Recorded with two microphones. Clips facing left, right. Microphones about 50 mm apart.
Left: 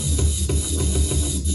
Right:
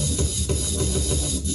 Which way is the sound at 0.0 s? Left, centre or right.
Centre.